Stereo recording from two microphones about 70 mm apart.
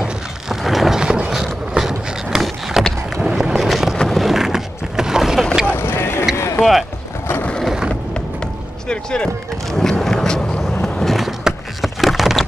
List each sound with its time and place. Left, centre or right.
0.0 s a sound: centre
1.9 s vehicle: centre
3.2 s a sound: centre
4.1 s boat: centre
5.7 s vehicle: left
6.3 s boat: left
6.6 s speech: centre
8.8 s speech: centre
9.7 s vehicle: centre
10.8 s a sound: centre